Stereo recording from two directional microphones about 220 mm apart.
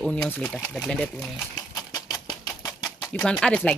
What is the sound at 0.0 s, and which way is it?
Speech, 5° left (ahead or behind).